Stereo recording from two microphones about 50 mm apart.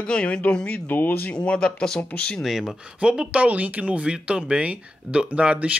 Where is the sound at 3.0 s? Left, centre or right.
Right.